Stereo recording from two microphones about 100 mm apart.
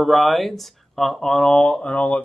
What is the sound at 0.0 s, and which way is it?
Speech, centre (ahead or behind).